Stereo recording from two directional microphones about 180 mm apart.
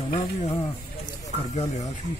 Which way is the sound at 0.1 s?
30° left (ahead or behind).